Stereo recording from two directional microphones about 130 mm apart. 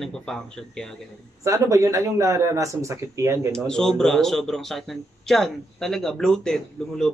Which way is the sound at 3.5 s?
5° left (ahead or behind).